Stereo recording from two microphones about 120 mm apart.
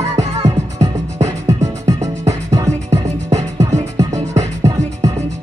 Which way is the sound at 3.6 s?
25° right (ahead or behind).